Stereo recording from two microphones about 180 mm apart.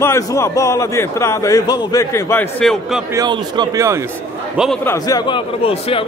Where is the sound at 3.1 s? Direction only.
20° right (ahead or behind).